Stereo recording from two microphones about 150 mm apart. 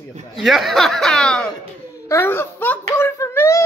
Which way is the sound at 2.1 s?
15° left (ahead or behind).